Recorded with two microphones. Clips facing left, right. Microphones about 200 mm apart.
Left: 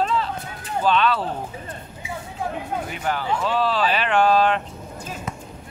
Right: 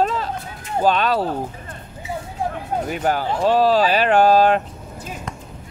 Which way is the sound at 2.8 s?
40° right (ahead or behind).